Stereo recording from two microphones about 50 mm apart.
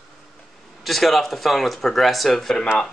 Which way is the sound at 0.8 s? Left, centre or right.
Centre.